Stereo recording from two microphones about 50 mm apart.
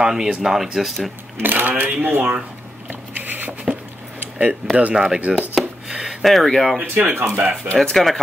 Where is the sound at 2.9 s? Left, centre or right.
Right.